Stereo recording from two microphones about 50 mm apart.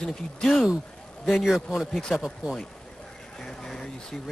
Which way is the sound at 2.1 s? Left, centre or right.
Centre.